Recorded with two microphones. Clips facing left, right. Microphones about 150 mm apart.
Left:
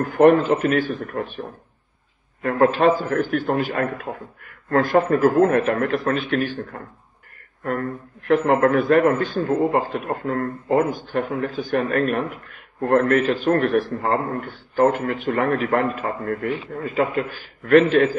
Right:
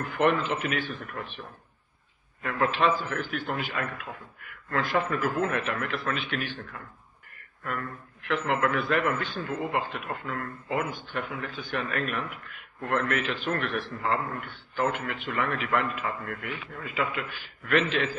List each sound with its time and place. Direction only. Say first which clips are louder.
0.0 s a man's voice: left 11 dB; 45° left (ahead or behind)